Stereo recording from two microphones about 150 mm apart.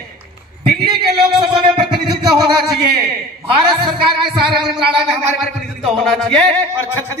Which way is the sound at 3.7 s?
Centre (ahead or behind).